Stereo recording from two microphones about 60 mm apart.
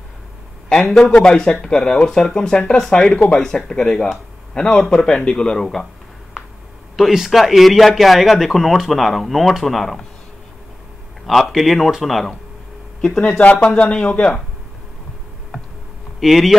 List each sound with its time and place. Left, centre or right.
1.1 s speech: centre
7.0 s a man's voice: centre
11.2 s a man's voice: centre
13.4 s speech: left
15.5 s a sound: centre
16.2 s a man's voice: centre